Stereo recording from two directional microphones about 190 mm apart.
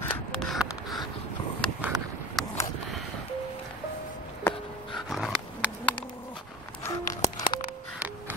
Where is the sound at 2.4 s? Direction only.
Centre (ahead or behind).